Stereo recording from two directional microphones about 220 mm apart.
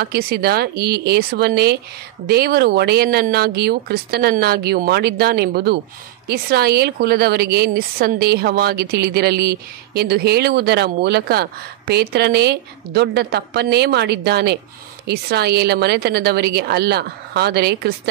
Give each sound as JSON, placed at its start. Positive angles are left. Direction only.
{"t": 0.0, "sound": "a woman's voice", "side_deg": -45}